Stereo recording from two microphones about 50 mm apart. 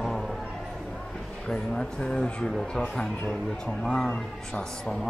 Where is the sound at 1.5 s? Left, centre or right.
Centre.